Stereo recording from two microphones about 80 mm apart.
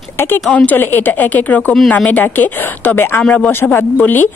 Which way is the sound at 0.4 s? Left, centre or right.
Centre.